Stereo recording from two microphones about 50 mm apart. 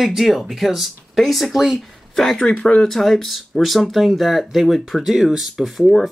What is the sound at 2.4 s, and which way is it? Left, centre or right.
Speech, left.